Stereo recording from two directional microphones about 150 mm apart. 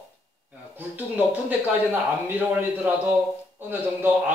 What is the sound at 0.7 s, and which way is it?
Speech, 10° right (ahead or behind).